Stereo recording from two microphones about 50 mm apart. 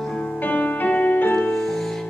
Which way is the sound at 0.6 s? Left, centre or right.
Left.